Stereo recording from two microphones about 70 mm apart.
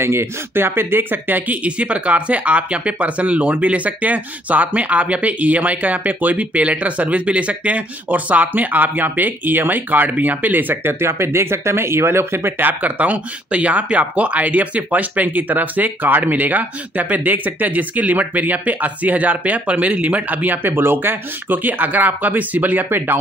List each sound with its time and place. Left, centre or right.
0.0 s speech: right